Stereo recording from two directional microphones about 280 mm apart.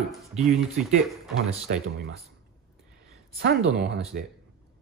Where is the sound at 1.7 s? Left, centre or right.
Right.